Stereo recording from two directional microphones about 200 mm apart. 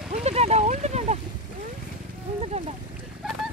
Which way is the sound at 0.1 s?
30° right (ahead or behind).